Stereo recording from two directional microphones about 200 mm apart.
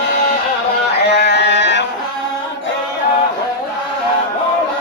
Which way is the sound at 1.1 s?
60° left (ahead or behind).